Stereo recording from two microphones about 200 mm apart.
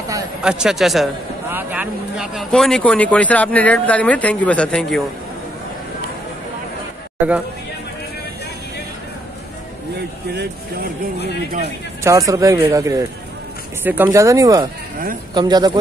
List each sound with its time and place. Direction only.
0.4 s a man's voice: 5° right (ahead or behind)
10.3 s speech: 55° right (ahead or behind)
12.0 s speech: 15° right (ahead or behind)